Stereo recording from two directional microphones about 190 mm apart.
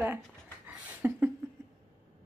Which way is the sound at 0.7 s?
10° right (ahead or behind).